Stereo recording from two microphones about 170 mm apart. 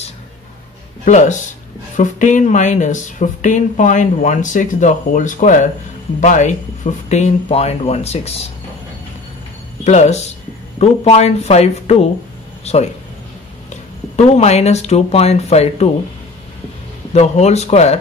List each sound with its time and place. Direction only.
1.0 s speech: 45° left (ahead or behind)
9.8 s speech: 40° left (ahead or behind)
17.1 s speech: 40° left (ahead or behind)